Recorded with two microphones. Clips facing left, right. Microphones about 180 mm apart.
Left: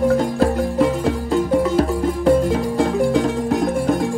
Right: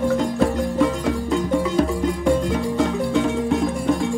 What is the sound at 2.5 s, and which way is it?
Music, 35° left (ahead or behind).